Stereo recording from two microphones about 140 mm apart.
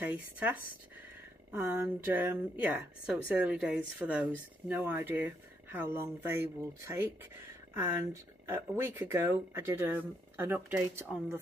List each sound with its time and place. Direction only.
0.0 s a woman's voice: 10° right (ahead or behind)
7.7 s a woman's voice: 15° right (ahead or behind)